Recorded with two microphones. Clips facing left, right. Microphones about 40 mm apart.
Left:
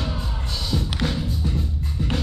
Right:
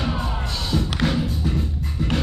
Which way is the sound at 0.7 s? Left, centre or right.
Centre.